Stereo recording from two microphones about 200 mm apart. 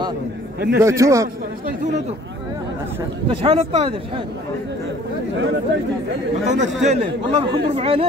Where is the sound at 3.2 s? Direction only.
25° right (ahead or behind).